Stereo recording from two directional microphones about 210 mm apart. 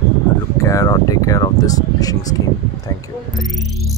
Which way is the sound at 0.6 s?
15° left (ahead or behind).